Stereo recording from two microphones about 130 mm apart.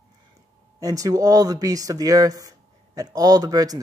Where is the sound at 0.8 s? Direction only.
25° right (ahead or behind).